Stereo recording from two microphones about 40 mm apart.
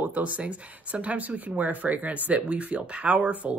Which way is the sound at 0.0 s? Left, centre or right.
Right.